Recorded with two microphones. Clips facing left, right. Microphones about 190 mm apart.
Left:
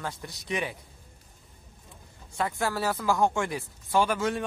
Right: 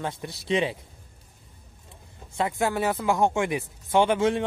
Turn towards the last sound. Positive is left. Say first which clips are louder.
# right 4 dB
turn(degrees=-25)  # may be behind; listen again after turning